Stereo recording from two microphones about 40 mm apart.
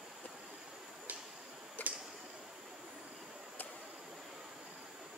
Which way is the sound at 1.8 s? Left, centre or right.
Left.